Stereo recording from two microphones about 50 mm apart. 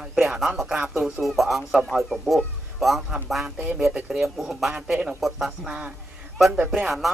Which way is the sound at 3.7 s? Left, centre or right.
Centre.